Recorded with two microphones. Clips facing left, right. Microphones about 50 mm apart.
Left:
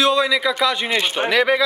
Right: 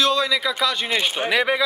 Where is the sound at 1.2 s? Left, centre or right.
Centre.